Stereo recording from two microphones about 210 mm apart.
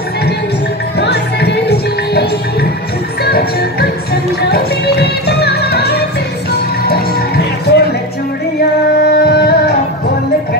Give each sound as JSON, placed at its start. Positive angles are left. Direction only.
{"t": 0.9, "sound": "music", "side_deg": 50}
{"t": 3.3, "sound": "music", "side_deg": 50}
{"t": 9.0, "sound": "music", "side_deg": 45}